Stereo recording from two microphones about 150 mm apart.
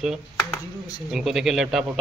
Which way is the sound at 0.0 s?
Centre (ahead or behind).